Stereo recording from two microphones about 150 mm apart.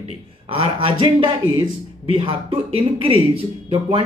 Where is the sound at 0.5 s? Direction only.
40° right (ahead or behind).